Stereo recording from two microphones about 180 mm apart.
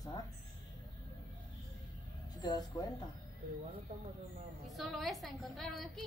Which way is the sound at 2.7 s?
25° left (ahead or behind).